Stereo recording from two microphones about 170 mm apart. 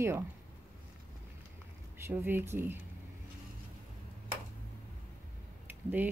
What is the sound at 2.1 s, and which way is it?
Speech, 10° right (ahead or behind).